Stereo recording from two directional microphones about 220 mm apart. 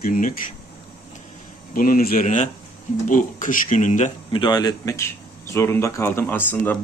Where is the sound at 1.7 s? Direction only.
40° left (ahead or behind).